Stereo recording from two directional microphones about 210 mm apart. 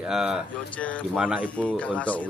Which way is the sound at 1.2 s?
5° right (ahead or behind).